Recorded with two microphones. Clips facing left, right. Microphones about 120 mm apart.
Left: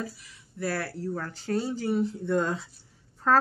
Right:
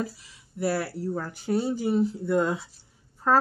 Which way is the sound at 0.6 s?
10° right (ahead or behind).